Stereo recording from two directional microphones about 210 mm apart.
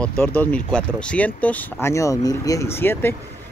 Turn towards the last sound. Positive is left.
turn(degrees=10)  # may be behind; listen again after turning